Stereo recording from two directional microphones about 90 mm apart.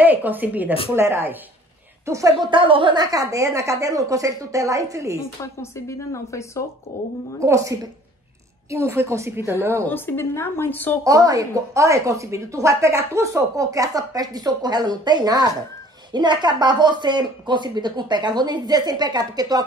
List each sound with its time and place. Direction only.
0.0 s a woman's voice: 20° right (ahead or behind)
2.0 s a woman's voice: 35° right (ahead or behind)
2.4 s speech: 65° right (ahead or behind); by 5.2 s 35° right (ahead or behind)
5.4 s speech: 30° left (ahead or behind)
7.4 s a woman's voice: 35° right (ahead or behind)
9.8 s a woman's voice: 20° left (ahead or behind)
11.1 s speech: 40° right (ahead or behind)